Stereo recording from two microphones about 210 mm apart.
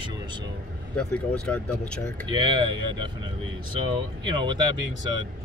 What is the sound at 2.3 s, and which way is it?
Speech, 20° right (ahead or behind).